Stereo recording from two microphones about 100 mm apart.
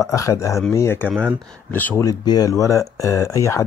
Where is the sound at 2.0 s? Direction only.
40° left (ahead or behind).